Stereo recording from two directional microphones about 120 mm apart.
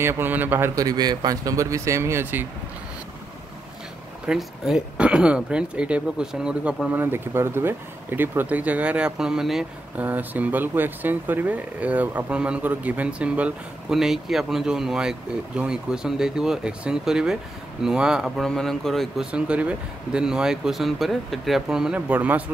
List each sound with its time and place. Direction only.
0.0 s speech: 20° right (ahead or behind)
0.7 s speech: 35° right (ahead or behind)
4.3 s speech: 5° right (ahead or behind)
10.0 s speech: 15° right (ahead or behind); by 19.2 s 5° left (ahead or behind)
19.3 s speech: 10° right (ahead or behind)